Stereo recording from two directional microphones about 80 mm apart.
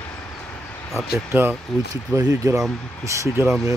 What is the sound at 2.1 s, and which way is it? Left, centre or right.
Speech, right.